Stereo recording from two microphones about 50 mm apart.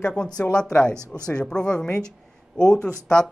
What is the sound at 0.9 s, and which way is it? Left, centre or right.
Speech, right.